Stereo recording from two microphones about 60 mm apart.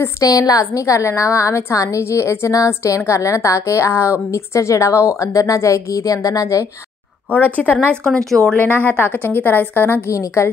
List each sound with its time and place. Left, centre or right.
0.2 s a woman's voice: left
7.2 s a woman's voice: left
10.0 s a woman's voice: left